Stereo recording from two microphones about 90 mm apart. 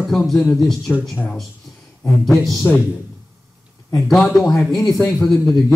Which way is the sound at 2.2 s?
Centre (ahead or behind).